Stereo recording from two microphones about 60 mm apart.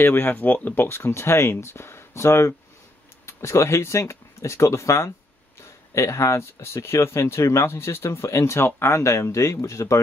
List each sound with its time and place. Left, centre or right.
0.0 s speech: left
0.8 s speech: left